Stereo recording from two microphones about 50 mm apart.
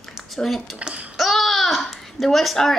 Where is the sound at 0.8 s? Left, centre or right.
Right.